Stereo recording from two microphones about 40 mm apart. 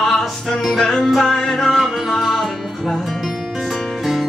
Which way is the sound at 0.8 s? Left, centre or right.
Centre.